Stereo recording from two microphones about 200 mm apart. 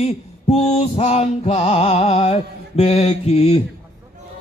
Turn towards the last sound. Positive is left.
turn(degrees=30)  # may be behind; listen again after turning